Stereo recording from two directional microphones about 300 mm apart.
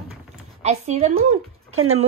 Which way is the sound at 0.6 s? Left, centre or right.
Right.